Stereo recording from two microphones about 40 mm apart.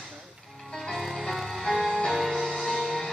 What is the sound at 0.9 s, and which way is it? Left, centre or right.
Music, centre.